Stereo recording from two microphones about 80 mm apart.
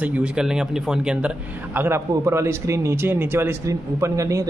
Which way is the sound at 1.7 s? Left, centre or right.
Right.